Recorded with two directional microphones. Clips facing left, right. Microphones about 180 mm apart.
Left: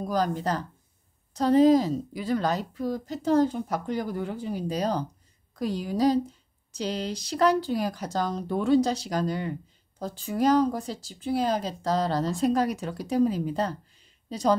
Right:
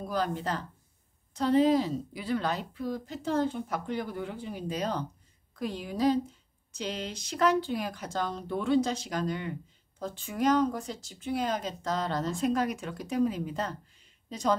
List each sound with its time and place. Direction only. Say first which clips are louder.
0.1 s speech: left 4 dB; 40° left (ahead or behind)